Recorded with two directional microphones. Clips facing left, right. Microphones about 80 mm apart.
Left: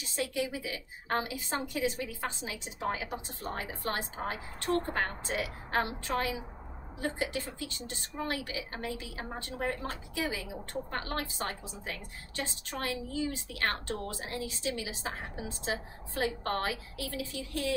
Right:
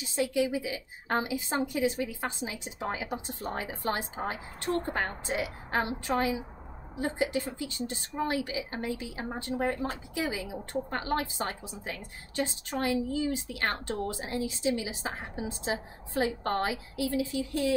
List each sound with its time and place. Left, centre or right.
0.2 s speech: centre